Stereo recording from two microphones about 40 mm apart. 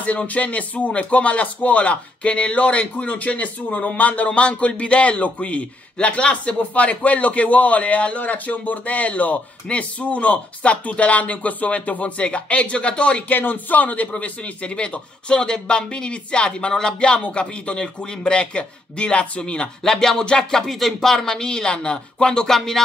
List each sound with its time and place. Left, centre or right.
0.0 s speech: left
13.3 s speech: left
14.1 s speech: left
19.8 s speech: centre
20.6 s speech: centre